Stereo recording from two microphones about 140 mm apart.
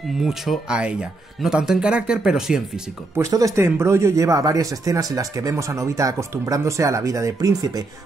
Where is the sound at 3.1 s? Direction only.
20° right (ahead or behind).